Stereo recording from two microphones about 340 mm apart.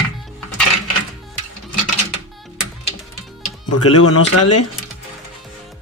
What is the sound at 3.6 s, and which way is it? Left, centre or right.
Speech, left.